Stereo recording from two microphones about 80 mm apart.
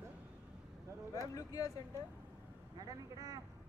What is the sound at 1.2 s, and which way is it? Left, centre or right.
Speech, left.